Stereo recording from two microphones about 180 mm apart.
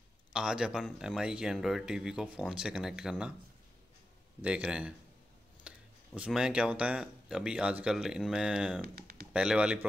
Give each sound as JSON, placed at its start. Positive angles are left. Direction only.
{"t": 0.3, "sound": "speech", "side_deg": -5}
{"t": 4.4, "sound": "speech", "side_deg": -5}
{"t": 8.8, "sound": "a sound", "side_deg": -55}
{"t": 9.3, "sound": "speech", "side_deg": -5}